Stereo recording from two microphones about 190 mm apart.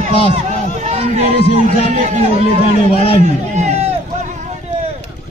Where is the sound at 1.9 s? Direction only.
35° right (ahead or behind).